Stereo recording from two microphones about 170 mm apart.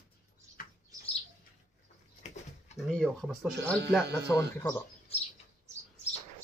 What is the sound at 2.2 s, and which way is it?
Pigeon, 40° left (ahead or behind).